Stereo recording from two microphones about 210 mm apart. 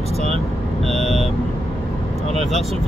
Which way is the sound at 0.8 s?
Centre (ahead or behind).